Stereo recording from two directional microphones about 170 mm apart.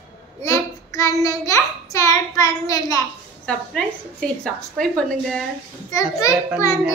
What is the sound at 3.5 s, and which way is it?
Speech, 5° left (ahead or behind).